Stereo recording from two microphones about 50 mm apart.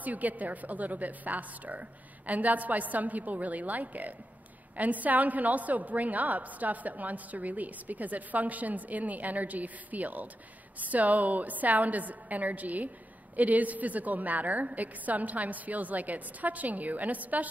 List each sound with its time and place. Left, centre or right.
0.0 s a woman's voice: right